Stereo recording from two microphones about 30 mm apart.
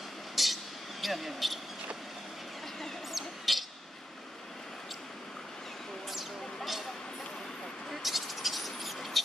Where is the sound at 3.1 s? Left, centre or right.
Centre.